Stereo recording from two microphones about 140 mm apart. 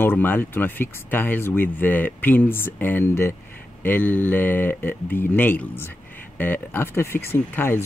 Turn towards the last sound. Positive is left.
turn(degrees=15)  # may be behind; listen again after turning